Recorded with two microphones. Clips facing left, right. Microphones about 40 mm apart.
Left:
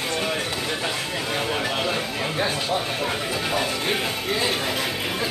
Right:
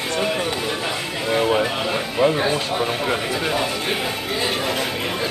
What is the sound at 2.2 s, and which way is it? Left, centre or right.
Speech, centre.